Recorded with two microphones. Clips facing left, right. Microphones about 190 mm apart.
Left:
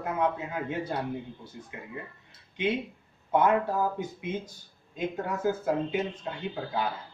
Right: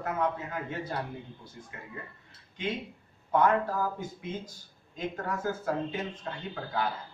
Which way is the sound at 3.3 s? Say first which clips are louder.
Left 1 dB; 20° left (ahead or behind).